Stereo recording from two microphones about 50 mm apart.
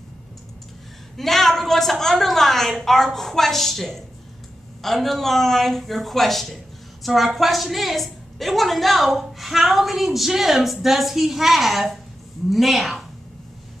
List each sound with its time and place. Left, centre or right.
1.1 s a woman's voice: centre